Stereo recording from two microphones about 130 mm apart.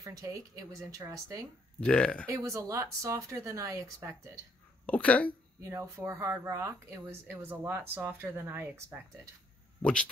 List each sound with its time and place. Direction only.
0.0 s speech: 25° right (ahead or behind)
1.8 s speech: 10° left (ahead or behind)
2.3 s speech: 20° right (ahead or behind)
4.8 s speech: 10° left (ahead or behind)
5.6 s speech: 20° right (ahead or behind)
9.8 s speech: 10° left (ahead or behind)